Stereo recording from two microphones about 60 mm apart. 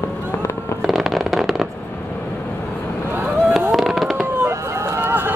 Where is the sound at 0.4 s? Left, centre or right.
Left.